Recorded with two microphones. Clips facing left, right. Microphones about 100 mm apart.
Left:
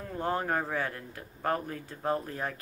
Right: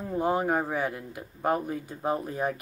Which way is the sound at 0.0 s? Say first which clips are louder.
Right 5 dB; 15° right (ahead or behind).